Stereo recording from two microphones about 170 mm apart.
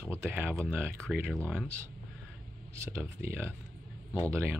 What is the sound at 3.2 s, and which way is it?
Speech, 15° right (ahead or behind).